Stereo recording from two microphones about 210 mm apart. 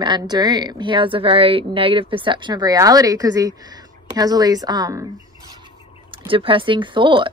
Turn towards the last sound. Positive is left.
turn(degrees=-25)  # may be behind; listen again after turning